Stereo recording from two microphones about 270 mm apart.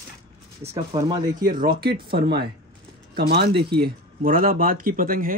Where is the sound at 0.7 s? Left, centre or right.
Centre.